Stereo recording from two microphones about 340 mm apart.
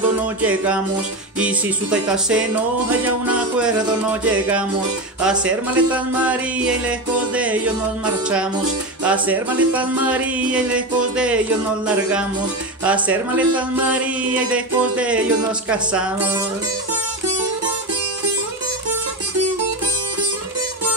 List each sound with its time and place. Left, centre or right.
0.4 s speech: centre
9.0 s speech: centre
12.8 s speech: centre